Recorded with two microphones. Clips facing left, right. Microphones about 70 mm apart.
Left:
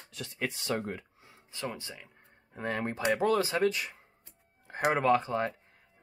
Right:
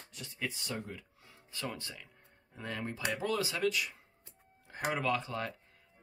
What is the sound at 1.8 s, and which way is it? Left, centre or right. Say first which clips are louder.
Speech: left 2 dB; centre.